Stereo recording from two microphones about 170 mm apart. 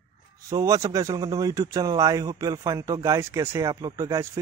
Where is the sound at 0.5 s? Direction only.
20° right (ahead or behind).